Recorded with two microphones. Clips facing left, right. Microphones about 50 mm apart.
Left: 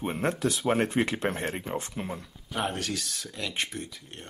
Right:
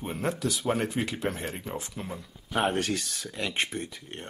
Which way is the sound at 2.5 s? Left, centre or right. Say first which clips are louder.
Right 4 dB; right.